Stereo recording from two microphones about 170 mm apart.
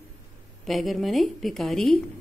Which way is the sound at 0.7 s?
Centre (ahead or behind).